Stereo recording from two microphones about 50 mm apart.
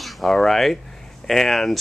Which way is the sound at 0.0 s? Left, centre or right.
Centre.